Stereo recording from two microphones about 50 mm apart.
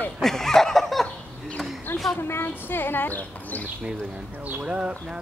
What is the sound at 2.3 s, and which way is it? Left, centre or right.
Speech, left.